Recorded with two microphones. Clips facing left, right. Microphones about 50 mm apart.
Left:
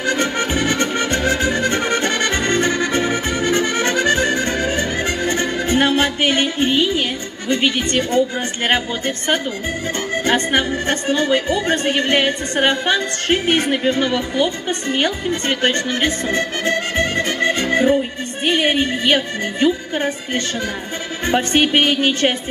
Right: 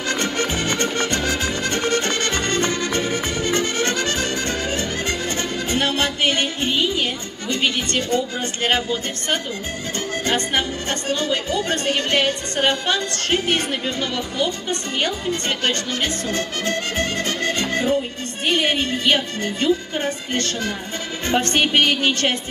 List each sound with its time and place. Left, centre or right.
0.0 s music: left
10.1 s a woman's voice: left